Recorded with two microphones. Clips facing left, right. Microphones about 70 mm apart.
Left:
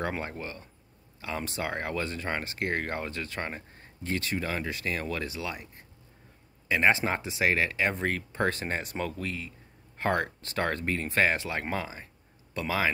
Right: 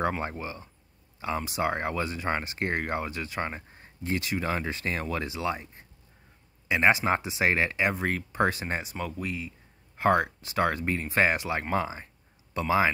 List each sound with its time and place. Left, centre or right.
0.2 s speech: right